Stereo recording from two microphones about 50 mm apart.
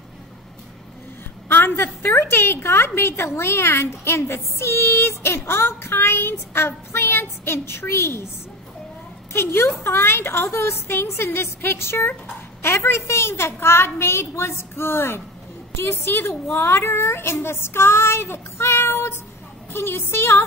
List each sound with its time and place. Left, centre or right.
1.5 s a woman's voice: left
9.3 s a woman's voice: left